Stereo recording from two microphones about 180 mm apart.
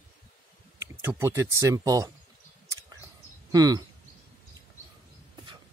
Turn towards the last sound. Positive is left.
turn(degrees=-20)  # may be behind; listen again after turning